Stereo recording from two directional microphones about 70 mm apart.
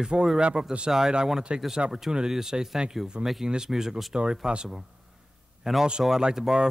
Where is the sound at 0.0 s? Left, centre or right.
Centre.